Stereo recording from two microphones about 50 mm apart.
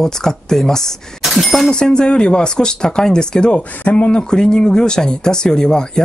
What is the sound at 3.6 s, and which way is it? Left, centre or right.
Speech, left.